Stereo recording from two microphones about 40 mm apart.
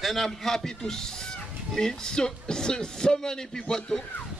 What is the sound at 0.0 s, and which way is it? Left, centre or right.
Speech, centre.